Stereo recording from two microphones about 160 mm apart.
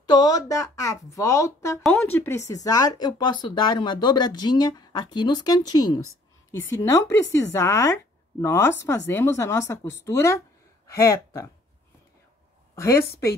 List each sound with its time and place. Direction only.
0.0 s speech: 25° left (ahead or behind)
12.7 s a woman's voice: 15° left (ahead or behind)